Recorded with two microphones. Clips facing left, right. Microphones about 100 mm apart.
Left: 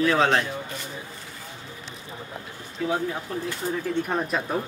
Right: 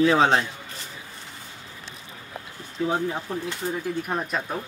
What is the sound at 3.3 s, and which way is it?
Speech, 20° right (ahead or behind).